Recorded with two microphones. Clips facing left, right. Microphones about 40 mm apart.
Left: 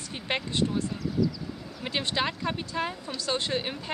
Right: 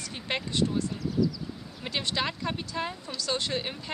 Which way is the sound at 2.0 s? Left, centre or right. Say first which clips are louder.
Left 1 dB; centre.